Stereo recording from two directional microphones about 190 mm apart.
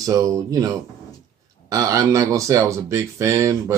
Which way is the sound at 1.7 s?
15° right (ahead or behind).